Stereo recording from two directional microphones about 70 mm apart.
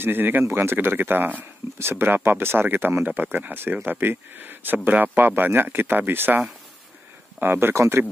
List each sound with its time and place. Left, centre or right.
0.0 s speech: right